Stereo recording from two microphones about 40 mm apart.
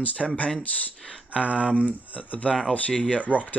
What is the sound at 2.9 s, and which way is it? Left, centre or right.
Speech, left.